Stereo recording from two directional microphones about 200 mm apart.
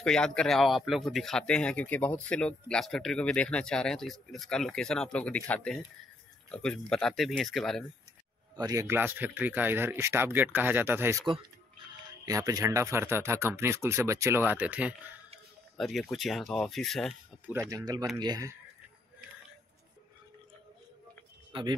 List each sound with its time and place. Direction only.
0.0 s speech: 5° left (ahead or behind)
8.5 s speech: 15° right (ahead or behind); by 17.1 s centre (ahead or behind)
17.5 s speech: 15° right (ahead or behind)
21.5 s a sound: 25° right (ahead or behind)